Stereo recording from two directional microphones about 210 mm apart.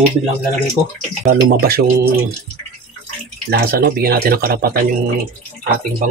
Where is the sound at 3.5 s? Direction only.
45° right (ahead or behind).